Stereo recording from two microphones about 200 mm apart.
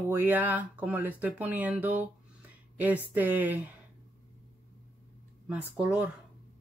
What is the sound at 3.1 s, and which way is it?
Speech, 10° right (ahead or behind).